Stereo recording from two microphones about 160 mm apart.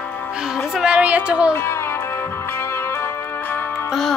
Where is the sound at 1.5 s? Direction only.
15° left (ahead or behind).